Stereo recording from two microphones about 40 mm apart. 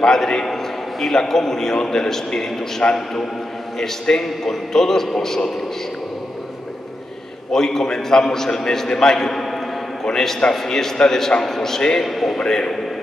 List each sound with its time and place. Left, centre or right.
0.0 s a man's voice: centre
2.8 s a man's voice: left
4.2 s a man's voice: centre
7.5 s a man's voice: centre
12.4 s a man's voice: centre